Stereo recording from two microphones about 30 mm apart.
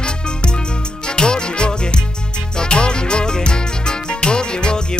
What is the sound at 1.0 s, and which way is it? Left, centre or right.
Music, left.